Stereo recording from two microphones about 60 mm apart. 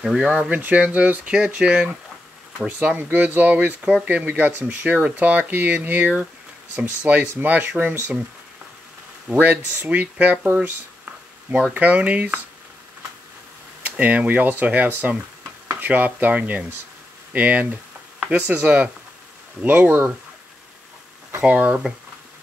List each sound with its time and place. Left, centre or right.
0.0 s speech: centre
0.3 s speech: right
3.0 s speech: right
9.3 s speech: right
10.4 s speech: right
11.1 s speech: right
13.8 s speech: right
21.5 s speech: right